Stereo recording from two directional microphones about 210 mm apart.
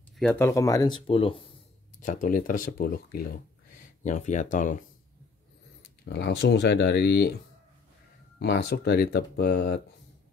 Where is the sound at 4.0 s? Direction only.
35° left (ahead or behind).